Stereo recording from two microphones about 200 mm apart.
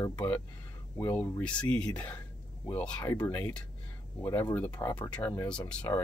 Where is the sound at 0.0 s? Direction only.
10° left (ahead or behind).